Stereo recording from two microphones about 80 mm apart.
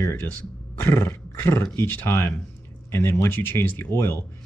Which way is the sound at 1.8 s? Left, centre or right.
Left.